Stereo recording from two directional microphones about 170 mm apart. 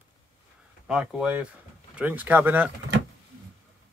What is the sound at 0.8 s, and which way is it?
Speech, 5° right (ahead or behind).